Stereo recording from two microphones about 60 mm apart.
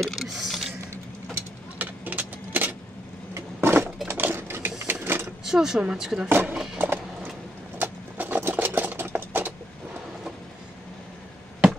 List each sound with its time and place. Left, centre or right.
0.0 s a sound: centre
1.3 s vehicle: right
3.3 s a sound: right
4.1 s sewing machine: right
4.8 s printer: right
5.4 s speech: centre
6.2 s speech: right
6.5 s a sound: centre
7.8 s engine: right